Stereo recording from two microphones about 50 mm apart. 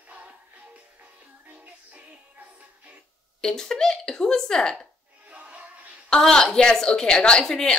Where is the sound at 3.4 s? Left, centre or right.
Centre.